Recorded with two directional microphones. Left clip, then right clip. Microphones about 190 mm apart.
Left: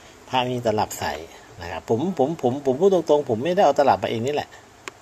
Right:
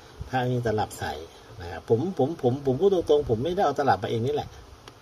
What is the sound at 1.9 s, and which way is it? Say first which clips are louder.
Speech: even; 25° left (ahead or behind).